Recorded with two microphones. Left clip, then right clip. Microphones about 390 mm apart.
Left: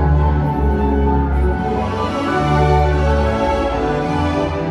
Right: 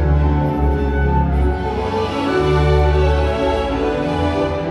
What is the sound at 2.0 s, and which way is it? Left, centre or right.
Music, centre.